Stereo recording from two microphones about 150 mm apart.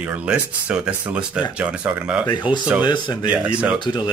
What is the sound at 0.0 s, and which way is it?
Speech, 10° right (ahead or behind).